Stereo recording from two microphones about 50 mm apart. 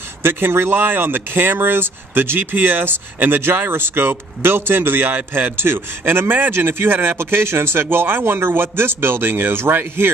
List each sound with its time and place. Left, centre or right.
0.2 s speech: right